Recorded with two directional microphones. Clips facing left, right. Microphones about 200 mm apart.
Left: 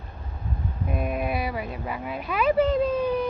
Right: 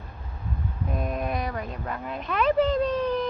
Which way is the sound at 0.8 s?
10° left (ahead or behind).